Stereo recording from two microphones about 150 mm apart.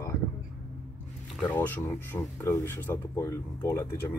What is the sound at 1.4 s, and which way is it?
Speech, 10° left (ahead or behind).